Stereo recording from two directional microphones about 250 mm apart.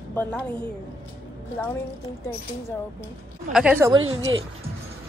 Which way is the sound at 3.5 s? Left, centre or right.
Centre.